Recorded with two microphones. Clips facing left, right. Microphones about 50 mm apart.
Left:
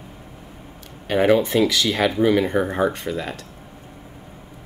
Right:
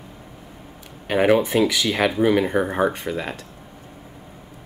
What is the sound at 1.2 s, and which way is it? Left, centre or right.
Speech, centre.